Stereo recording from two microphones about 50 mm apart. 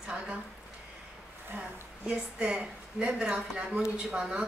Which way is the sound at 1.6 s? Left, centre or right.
Centre.